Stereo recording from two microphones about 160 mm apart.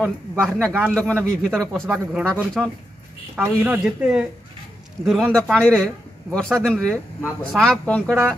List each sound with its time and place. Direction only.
0.0 s speech: 5° left (ahead or behind)
3.6 s speech: 10° right (ahead or behind)